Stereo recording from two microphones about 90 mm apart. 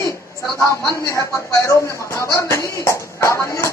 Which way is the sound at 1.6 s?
35° left (ahead or behind).